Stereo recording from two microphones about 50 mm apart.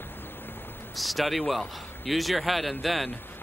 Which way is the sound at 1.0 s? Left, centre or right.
Centre.